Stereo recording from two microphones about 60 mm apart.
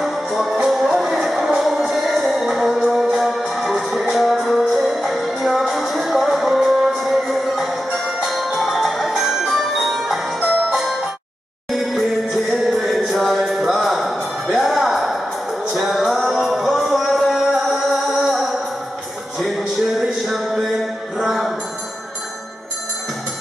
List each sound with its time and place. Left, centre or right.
0.0 s music: centre